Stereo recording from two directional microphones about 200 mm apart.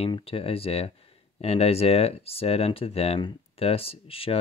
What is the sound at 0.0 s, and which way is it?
Speech, 30° left (ahead or behind).